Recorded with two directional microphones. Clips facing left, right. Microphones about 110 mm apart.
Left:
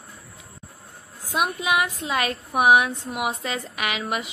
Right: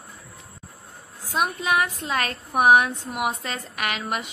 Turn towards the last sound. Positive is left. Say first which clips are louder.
# left 1 dB
turn(degrees=0)  # may be behind; listen again after turning